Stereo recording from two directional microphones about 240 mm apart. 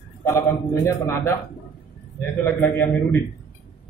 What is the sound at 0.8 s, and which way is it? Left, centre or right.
A man's voice, centre.